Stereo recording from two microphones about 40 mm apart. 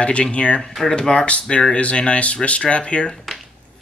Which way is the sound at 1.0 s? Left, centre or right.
Left.